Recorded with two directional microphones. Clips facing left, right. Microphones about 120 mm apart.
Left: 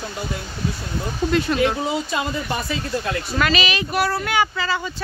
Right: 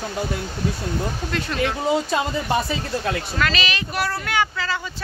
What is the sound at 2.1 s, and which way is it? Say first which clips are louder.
Speech: right 2 dB; 35° right (ahead or behind).